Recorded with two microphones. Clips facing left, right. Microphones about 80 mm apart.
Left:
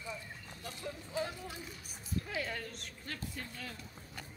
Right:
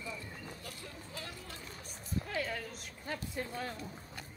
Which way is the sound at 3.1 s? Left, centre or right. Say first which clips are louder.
Right 5 dB; centre.